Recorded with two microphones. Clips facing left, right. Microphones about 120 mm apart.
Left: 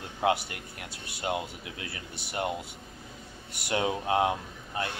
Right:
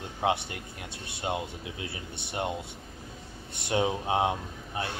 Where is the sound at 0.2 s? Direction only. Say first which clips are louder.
Left 1 dB; 25° right (ahead or behind).